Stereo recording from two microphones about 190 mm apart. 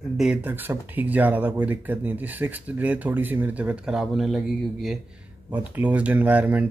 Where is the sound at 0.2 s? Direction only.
5° right (ahead or behind).